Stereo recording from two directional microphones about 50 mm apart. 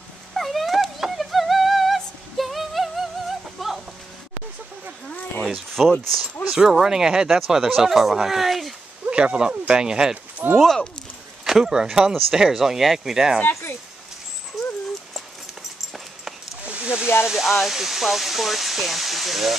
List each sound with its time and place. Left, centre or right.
0.3 s a sound: centre
2.0 s music: centre
5.8 s speech: centre
6.5 s speech: centre
9.1 s speech: centre
10.4 s speech: right
11.4 s speech: centre
14.6 s dog: centre
16.6 s snake: right
17.3 s speech: centre